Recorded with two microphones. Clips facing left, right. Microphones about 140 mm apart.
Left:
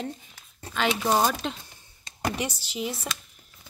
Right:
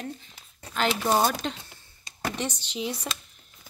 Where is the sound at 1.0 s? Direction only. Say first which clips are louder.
Even; centre (ahead or behind).